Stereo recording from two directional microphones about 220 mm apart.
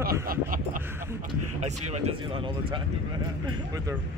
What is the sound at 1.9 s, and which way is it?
Speech, 25° right (ahead or behind).